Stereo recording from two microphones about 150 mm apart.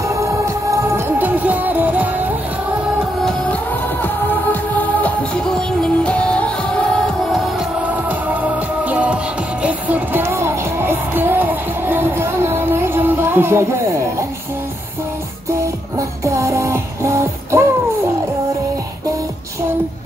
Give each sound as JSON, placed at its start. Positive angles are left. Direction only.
{"t": 0.1, "sound": "music", "side_deg": -20}
{"t": 4.0, "sound": "music", "side_deg": 10}
{"t": 7.9, "sound": "music", "side_deg": -10}
{"t": 16.0, "sound": "music", "side_deg": -20}